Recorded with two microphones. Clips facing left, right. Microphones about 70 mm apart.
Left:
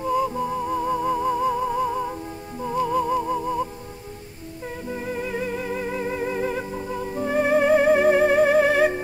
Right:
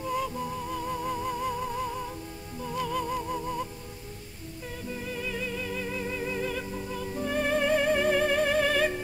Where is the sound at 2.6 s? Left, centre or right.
Left.